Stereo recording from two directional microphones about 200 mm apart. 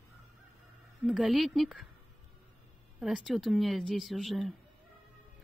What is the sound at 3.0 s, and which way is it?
Speech, centre (ahead or behind).